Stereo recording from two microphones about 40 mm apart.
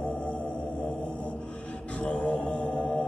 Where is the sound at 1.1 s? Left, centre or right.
Left.